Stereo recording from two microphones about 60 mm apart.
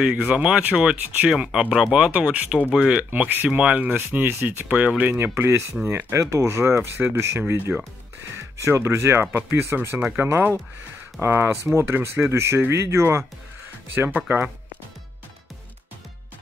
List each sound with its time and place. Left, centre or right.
0.0 s speech: centre
2.0 s speech: right
2.7 s speech: centre
3.1 s speech: right
3.4 s speech: centre
5.1 s speech: right
9.8 s speech: right
13.9 s speech: right